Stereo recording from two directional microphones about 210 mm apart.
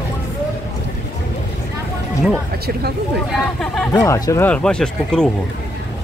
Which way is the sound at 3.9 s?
15° left (ahead or behind).